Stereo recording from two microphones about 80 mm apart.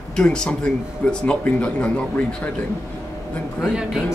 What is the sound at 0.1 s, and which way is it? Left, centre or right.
Speech, centre.